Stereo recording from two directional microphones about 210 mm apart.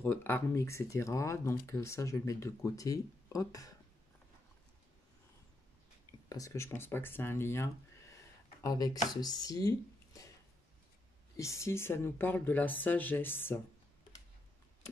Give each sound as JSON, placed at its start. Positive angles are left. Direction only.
{"t": 0.0, "sound": "speech", "side_deg": 10}
{"t": 6.2, "sound": "speech", "side_deg": 15}
{"t": 11.3, "sound": "speech", "side_deg": 15}